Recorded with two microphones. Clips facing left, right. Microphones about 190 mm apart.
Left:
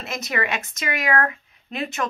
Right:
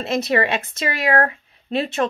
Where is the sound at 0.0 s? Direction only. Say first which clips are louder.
Right 7 dB; 30° right (ahead or behind).